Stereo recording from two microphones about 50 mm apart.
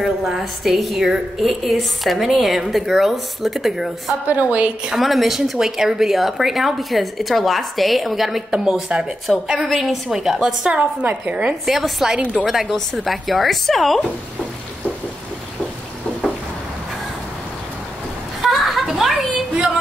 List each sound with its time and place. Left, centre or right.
0.0 s a woman's voice: centre
4.3 s a woman's voice: right
4.9 s a woman's voice: centre
10.7 s a woman's voice: right
11.7 s a woman's voice: centre
18.4 s a sound: centre